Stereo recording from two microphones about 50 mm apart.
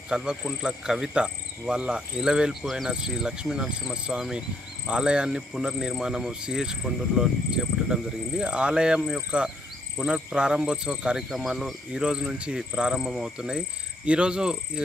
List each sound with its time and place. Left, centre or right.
0.1 s speech: centre
2.6 s speech: centre
2.9 s speech: centre
11.2 s speech: centre
11.9 s speech: centre